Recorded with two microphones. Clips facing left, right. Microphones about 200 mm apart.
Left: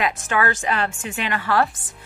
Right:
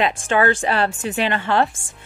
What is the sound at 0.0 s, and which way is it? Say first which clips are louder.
A woman's voice: right 4 dB; 30° right (ahead or behind).